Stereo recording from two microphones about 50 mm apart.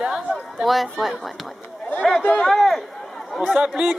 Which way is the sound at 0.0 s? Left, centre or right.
Centre.